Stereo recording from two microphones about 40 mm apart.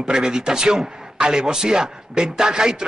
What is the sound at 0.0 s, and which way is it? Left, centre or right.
A man's voice, centre.